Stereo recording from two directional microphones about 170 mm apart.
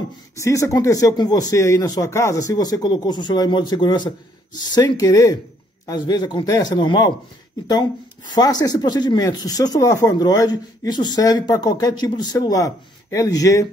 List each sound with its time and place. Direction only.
0.4 s speech: 20° left (ahead or behind)